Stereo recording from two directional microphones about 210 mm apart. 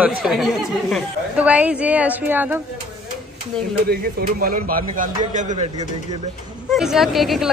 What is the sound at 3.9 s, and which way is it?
Speech, 45° right (ahead or behind).